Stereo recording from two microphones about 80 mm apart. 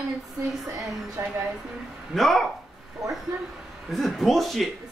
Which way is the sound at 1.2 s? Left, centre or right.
Right.